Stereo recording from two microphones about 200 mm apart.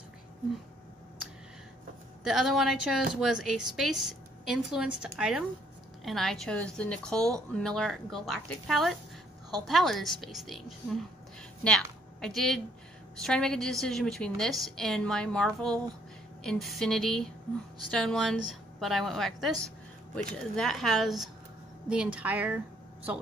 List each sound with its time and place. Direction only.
2.2 s a woman's voice: centre (ahead or behind)
11.6 s a sound: 5° left (ahead or behind)
13.1 s a woman's voice: 5° left (ahead or behind)